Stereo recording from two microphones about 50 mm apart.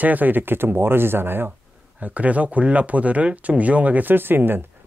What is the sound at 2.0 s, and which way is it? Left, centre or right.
Speech, right.